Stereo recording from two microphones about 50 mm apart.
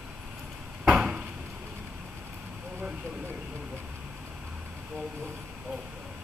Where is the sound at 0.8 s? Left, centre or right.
Right.